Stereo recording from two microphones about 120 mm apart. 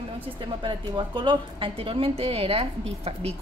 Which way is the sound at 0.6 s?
40° right (ahead or behind).